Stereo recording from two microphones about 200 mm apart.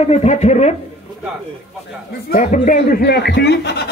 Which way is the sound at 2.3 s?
40° left (ahead or behind).